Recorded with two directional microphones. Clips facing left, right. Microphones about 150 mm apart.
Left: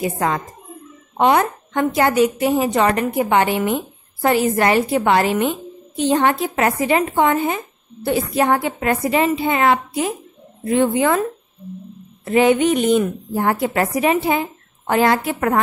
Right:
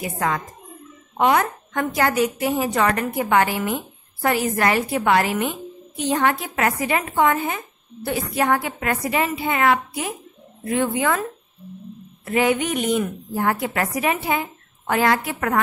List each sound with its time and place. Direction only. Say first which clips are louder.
0.0 s a woman's voice: left 4 dB; 25° left (ahead or behind)
12.3 s a woman's voice: left 6 dB; 25° left (ahead or behind)